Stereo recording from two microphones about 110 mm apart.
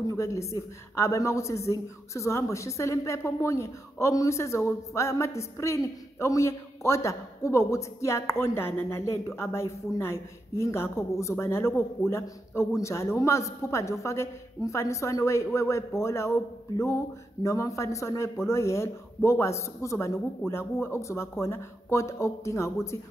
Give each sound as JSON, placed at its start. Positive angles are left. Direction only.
{"t": 0.0, "sound": "a woman's voice", "side_deg": 30}